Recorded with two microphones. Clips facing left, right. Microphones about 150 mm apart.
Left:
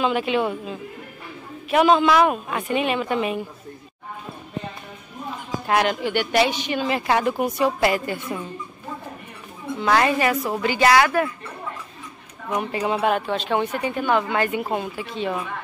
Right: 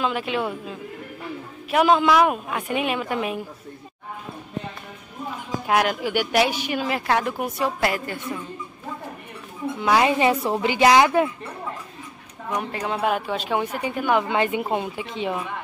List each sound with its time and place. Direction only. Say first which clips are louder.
0.0 s a woman's voice: left 3 dB; centre (ahead or behind)
5.7 s a woman's voice: left 1 dB; 5° right (ahead or behind)
9.8 s a woman's voice: even; 10° right (ahead or behind)
12.5 s a woman's voice: left 3 dB; 5° left (ahead or behind); by 15.4 s 15° right (ahead or behind)